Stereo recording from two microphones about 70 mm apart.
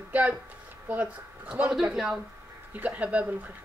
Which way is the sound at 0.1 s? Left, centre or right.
Right.